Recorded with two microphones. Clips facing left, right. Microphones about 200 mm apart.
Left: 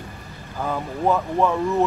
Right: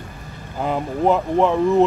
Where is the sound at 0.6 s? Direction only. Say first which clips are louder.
Right 4 dB; 20° right (ahead or behind).